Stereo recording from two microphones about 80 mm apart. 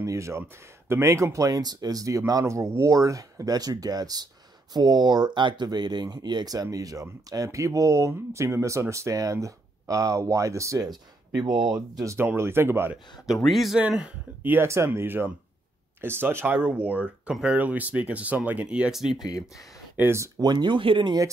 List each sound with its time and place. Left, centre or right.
0.0 s speech: right
10.9 s speech: right
12.2 s speech: right
13.3 s speech: centre
13.7 s speech: centre
14.5 s speech: right; by 19.2 s centre
20.0 s speech: right
20.3 s speech: right